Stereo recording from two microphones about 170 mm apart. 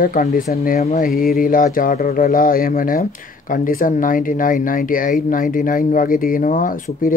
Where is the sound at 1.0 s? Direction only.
60° left (ahead or behind).